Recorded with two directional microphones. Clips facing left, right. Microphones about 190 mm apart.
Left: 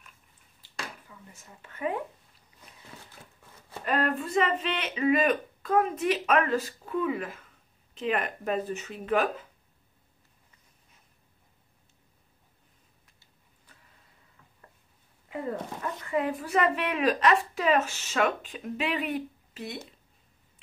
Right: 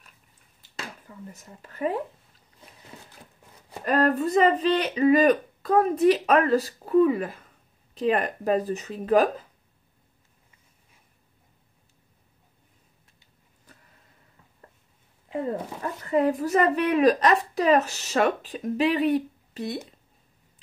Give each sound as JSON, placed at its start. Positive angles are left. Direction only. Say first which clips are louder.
{"t": 1.0, "sound": "speech", "louder": "right 8 dB", "side_deg": -40}
{"t": 3.8, "sound": "a woman's voice", "louder": "right 6 dB", "side_deg": -40}
{"t": 15.8, "sound": "a woman's voice", "louder": "right 7 dB", "side_deg": -35}